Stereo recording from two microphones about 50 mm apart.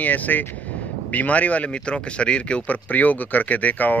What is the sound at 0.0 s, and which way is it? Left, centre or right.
A man's voice, left.